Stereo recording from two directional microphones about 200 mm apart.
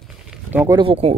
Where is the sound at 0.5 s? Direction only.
15° right (ahead or behind).